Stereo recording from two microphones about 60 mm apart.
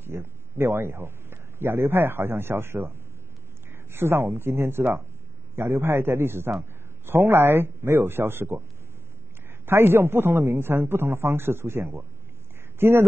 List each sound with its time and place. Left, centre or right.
0.0 s a man's voice: right
9.7 s a man's voice: right